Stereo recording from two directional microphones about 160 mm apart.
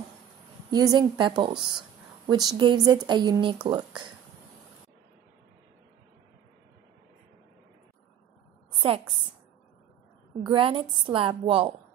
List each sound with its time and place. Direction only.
0.7 s speech: 25° right (ahead or behind)
8.7 s a sound: 35° right (ahead or behind)
10.4 s a woman's voice: 30° right (ahead or behind)